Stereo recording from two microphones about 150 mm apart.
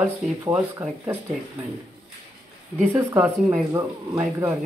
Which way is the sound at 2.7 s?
15° right (ahead or behind).